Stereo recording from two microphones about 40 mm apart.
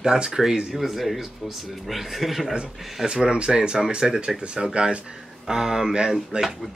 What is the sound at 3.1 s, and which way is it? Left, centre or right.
Speech, right.